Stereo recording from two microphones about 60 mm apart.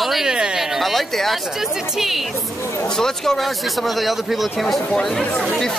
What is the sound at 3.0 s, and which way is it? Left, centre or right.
Speech, centre.